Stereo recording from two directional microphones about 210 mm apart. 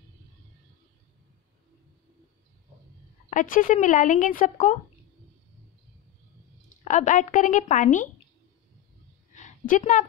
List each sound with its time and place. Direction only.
3.3 s speech: 40° left (ahead or behind)
6.8 s speech: 35° left (ahead or behind)
9.3 s a sound: 35° left (ahead or behind)